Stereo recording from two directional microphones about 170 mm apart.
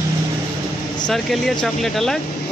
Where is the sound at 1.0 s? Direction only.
Centre (ahead or behind).